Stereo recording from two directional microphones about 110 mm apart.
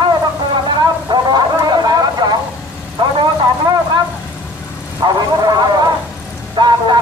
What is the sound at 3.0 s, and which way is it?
Vehicle, 50° right (ahead or behind).